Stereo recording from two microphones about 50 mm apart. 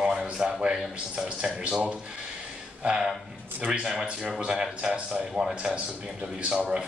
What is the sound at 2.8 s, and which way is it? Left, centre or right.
Speech, centre.